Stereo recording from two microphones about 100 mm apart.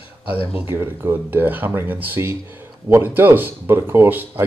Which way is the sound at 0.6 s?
20° right (ahead or behind).